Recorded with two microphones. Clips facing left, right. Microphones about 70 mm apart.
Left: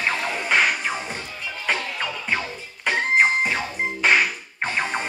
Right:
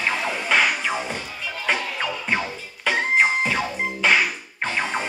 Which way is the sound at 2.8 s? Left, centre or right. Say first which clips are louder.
Even; centre.